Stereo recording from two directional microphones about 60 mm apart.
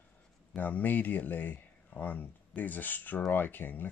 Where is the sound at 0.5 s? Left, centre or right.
Left.